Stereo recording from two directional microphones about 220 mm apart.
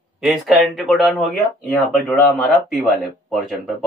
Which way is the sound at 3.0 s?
Centre (ahead or behind).